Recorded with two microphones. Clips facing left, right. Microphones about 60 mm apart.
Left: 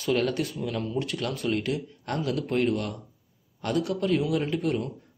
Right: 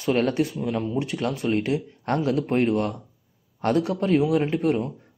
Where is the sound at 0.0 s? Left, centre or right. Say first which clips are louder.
Right 4 dB; right.